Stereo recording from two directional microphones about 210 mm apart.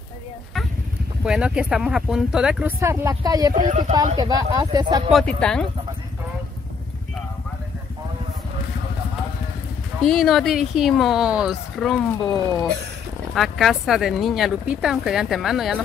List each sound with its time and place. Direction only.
1.2 s speech: 5° right (ahead or behind)
2.8 s speech: 15° right (ahead or behind)
5.4 s speech: 5° left (ahead or behind)
10.0 s speech: centre (ahead or behind)